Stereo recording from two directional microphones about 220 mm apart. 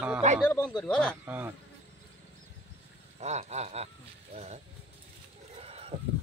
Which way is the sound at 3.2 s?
30° right (ahead or behind).